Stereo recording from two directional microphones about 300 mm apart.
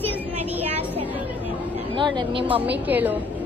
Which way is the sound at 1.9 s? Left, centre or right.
Centre.